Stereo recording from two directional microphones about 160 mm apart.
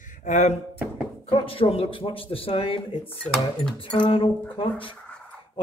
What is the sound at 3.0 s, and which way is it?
Speech, 10° left (ahead or behind).